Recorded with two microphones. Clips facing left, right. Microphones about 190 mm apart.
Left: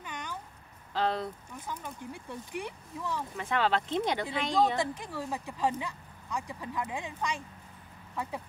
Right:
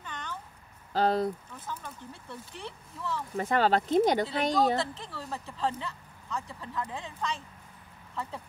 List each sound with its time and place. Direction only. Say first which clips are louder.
0.0 s a sound: even; 10° left (ahead or behind)
0.9 s speech: right 5 dB; 40° right (ahead or behind)
1.7 s speech: left 1 dB; 15° left (ahead or behind)
3.3 s speech: right 4 dB; 40° right (ahead or behind)
4.7 s speech: left 1 dB; 15° left (ahead or behind)